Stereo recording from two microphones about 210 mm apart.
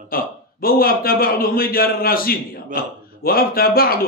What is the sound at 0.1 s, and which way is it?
A man's voice, 45° left (ahead or behind).